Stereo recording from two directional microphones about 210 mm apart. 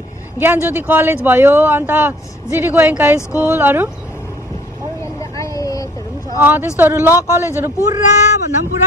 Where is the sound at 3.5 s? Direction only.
10° right (ahead or behind).